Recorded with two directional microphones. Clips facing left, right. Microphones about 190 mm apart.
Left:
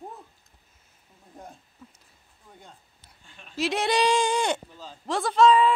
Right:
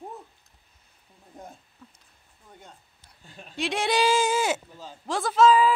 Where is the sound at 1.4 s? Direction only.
5° right (ahead or behind).